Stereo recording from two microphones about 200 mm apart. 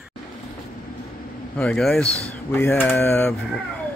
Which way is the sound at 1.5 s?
5° left (ahead or behind).